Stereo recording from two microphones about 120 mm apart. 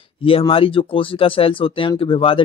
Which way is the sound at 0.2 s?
50° left (ahead or behind).